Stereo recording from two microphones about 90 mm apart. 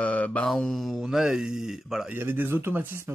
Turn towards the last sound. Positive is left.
turn(degrees=-25)  # may be behind; listen again after turning